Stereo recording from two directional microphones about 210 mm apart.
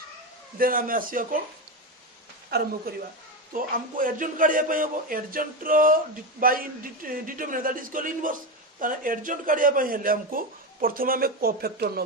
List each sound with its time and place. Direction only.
0.6 s a man's voice: 40° right (ahead or behind)
2.9 s a man's voice: 45° right (ahead or behind)